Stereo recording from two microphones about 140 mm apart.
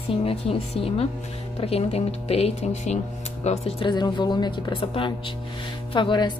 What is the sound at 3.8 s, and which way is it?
Speech, 30° left (ahead or behind).